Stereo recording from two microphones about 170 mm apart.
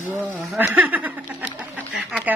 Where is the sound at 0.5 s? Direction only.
10° right (ahead or behind).